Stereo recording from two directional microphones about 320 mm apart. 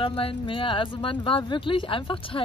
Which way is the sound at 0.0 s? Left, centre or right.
Centre.